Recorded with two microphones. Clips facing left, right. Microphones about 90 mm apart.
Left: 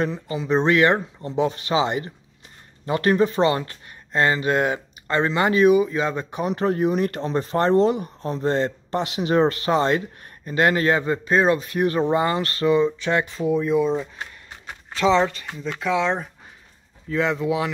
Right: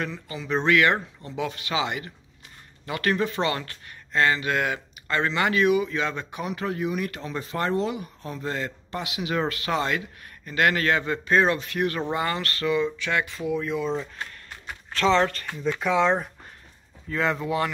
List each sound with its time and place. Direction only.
0.0 s speech: 25° left (ahead or behind); by 9.4 s 40° left (ahead or behind)
9.4 s speech: 30° left (ahead or behind)
13.6 s speech: 20° left (ahead or behind)
15.8 s speech: 5° right (ahead or behind)